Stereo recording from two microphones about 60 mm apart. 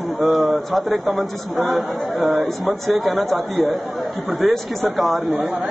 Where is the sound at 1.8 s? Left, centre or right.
Right.